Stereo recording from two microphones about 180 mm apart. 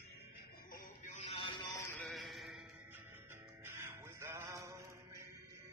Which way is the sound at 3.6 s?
15° right (ahead or behind).